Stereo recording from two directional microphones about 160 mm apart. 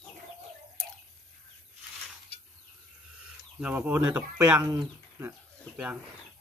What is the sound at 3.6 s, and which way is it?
Speech, 10° right (ahead or behind).